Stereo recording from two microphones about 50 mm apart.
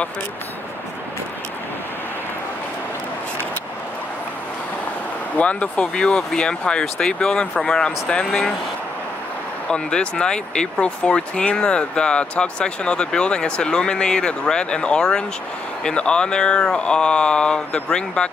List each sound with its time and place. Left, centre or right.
5.3 s speech: left
6.0 s speech: centre
9.7 s speech: centre